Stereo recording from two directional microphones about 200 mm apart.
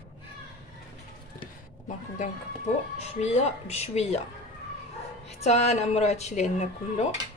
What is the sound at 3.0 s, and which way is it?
Speech, 35° left (ahead or behind).